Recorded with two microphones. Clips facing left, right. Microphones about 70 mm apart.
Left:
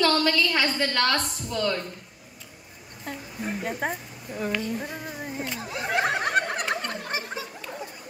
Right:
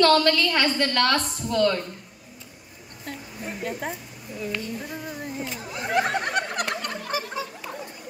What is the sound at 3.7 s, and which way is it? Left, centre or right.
Speech, left.